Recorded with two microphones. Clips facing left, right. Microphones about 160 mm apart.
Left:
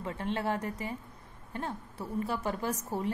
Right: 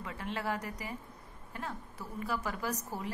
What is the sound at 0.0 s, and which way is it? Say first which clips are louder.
A woman's voice: left 5 dB; 25° left (ahead or behind).